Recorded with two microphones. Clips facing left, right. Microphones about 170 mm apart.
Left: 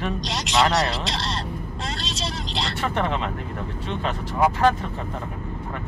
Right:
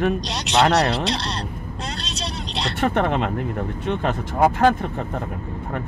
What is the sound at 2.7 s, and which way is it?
Speech, 55° right (ahead or behind).